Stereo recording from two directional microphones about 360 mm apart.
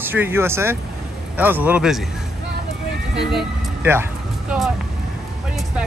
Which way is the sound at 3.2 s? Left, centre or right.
Centre.